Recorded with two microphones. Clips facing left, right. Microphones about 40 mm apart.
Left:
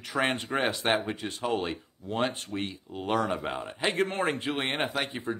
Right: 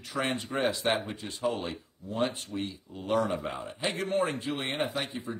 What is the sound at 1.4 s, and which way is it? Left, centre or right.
Speech, left.